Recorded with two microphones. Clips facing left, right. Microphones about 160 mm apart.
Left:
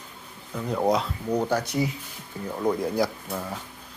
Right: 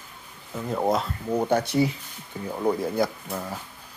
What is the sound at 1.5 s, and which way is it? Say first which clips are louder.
Speech: right 3 dB; 25° right (ahead or behind).